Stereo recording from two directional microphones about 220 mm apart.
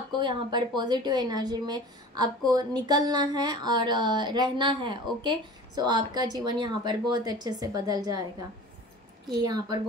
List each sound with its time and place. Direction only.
0.2 s speech: 20° right (ahead or behind)
9.4 s speech: 20° right (ahead or behind)